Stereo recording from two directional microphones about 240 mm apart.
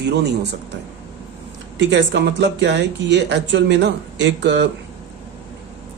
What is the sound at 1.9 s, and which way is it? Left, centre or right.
Speech, right.